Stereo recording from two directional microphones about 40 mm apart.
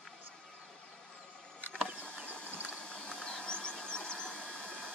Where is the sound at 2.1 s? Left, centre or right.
Right.